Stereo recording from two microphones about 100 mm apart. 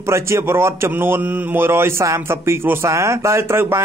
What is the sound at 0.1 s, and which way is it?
A man's voice, 25° right (ahead or behind).